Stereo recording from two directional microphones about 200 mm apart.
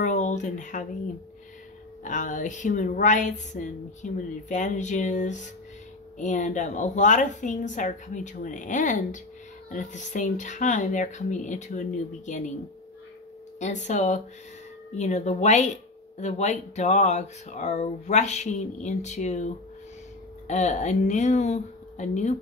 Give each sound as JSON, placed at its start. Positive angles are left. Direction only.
{"t": 0.0, "sound": "speech", "side_deg": 40}
{"t": 2.0, "sound": "speech", "side_deg": 40}
{"t": 13.6, "sound": "speech", "side_deg": 35}